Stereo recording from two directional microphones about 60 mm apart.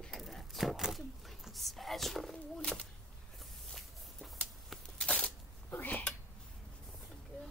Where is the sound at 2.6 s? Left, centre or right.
Centre.